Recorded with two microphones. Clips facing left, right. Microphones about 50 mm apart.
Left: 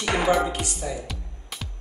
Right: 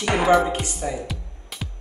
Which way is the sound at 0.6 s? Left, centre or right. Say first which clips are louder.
Right 2 dB; right.